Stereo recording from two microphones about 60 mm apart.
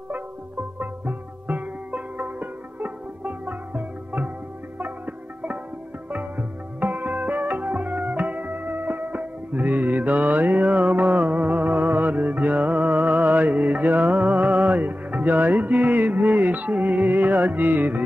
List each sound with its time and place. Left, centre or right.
0.7 s music: right